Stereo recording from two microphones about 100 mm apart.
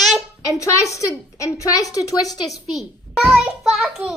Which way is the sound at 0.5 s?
35° left (ahead or behind).